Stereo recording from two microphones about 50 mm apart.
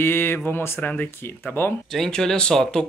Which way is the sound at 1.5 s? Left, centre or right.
Left.